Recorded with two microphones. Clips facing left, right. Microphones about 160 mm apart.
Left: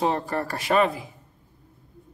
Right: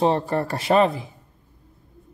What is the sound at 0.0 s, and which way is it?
Speech, 30° right (ahead or behind).